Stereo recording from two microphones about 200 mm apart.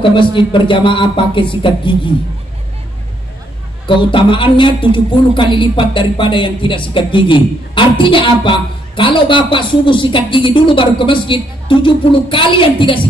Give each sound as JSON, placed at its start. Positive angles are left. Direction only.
{"t": 0.0, "sound": "a woman's voice", "side_deg": 25}
{"t": 3.8, "sound": "a woman's voice", "side_deg": 25}